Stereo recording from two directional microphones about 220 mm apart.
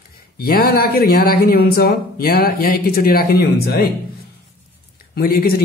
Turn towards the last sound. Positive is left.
turn(degrees=45)  # may be behind; listen again after turning